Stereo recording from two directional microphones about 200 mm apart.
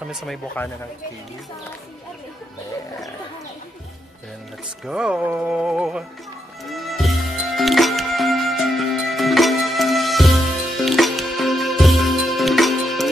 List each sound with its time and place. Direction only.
0.0 s speech: centre (ahead or behind)
4.8 s speech: 5° right (ahead or behind)
6.6 s music: centre (ahead or behind)